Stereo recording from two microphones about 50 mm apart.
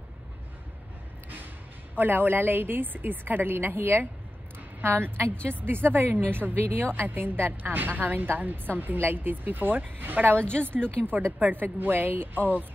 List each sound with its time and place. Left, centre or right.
2.0 s a woman's voice: right
10.7 s speech: centre
11.1 s a woman's voice: right